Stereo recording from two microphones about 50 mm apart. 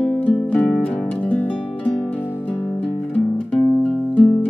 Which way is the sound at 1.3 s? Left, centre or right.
Left.